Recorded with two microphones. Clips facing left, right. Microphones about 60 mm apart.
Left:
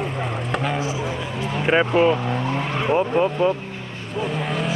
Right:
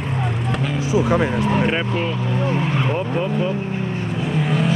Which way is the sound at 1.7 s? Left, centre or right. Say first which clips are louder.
Left 5 dB; centre.